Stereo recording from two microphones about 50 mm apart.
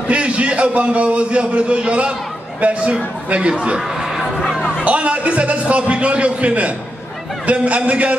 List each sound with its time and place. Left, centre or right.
0.1 s a man's voice: right
4.0 s a sound: centre
4.8 s a man's voice: right